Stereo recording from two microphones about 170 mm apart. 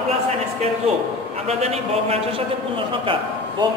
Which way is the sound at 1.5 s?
40° right (ahead or behind).